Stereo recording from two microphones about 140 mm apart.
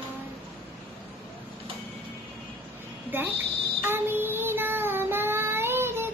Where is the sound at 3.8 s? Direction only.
15° right (ahead or behind).